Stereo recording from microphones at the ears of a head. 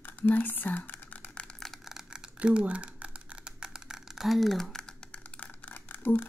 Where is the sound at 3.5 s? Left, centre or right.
Centre.